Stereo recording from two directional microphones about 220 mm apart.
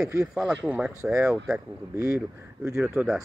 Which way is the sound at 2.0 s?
15° right (ahead or behind).